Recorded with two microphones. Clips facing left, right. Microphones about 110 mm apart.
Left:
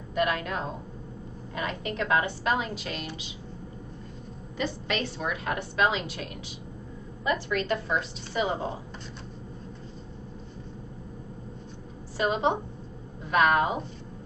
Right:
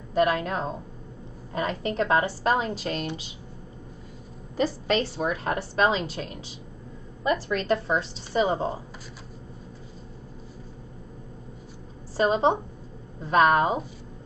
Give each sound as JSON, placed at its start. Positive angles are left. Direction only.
{"t": 0.1, "sound": "a woman's voice", "side_deg": -35}
{"t": 4.6, "sound": "a woman's voice", "side_deg": -35}
{"t": 7.2, "sound": "a woman's voice", "side_deg": -30}
{"t": 12.2, "sound": "a woman's voice", "side_deg": -35}